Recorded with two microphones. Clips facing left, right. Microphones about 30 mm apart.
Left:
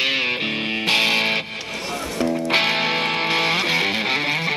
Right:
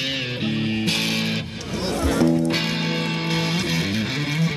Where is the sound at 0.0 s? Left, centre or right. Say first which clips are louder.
Left 5 dB; left.